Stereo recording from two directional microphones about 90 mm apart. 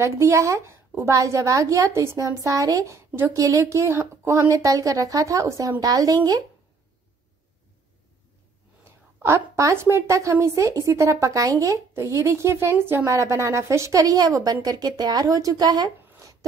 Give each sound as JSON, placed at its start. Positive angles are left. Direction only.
{"t": 0.0, "sound": "a woman's voice", "side_deg": -35}
{"t": 8.8, "sound": "a woman's voice", "side_deg": -30}